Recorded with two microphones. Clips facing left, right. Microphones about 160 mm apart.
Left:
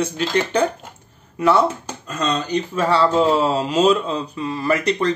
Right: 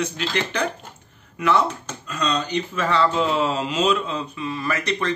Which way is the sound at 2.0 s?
40° left (ahead or behind).